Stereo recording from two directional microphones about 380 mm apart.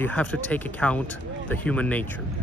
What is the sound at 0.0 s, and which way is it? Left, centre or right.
Speech, centre.